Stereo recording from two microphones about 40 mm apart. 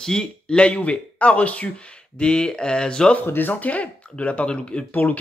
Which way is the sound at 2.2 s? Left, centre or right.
Left.